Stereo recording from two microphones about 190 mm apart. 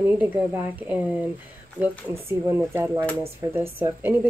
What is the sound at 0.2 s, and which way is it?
Speech, 10° right (ahead or behind).